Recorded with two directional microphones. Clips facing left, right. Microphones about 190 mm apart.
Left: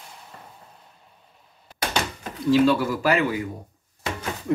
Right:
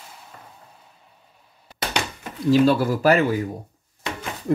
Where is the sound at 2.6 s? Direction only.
40° right (ahead or behind).